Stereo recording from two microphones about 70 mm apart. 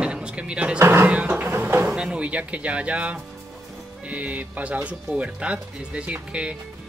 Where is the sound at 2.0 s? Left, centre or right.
Centre.